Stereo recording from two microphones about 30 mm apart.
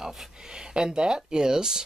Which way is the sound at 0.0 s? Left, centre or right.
Centre.